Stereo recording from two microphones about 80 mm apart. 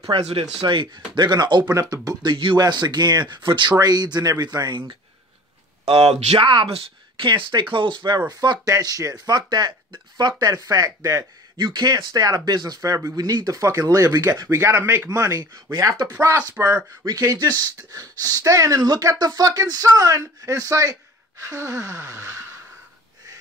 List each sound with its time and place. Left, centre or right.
0.7 s speech: right
1.7 s speech: right
2.0 s speech: right
2.5 s speech: right
3.8 s speech: right
6.4 s speech: right
8.3 s speech: right
10.5 s speech: right
11.5 s speech: right
14.8 s speech: right
15.0 s speech: right
16.3 s speech: right
17.0 s speech: right